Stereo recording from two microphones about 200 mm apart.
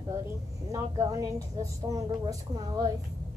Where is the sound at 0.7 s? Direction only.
15° right (ahead or behind).